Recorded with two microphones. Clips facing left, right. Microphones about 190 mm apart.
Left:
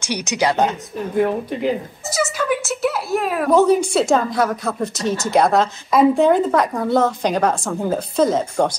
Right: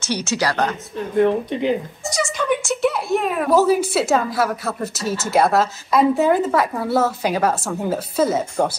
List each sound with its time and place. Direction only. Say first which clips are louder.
0.0 s speech: left 1 dB; 15° left (ahead or behind)
1.2 s a woman's voice: right 2 dB; 5° left (ahead or behind)